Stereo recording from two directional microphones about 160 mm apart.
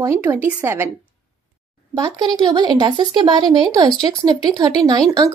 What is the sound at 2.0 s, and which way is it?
Speech, 25° right (ahead or behind).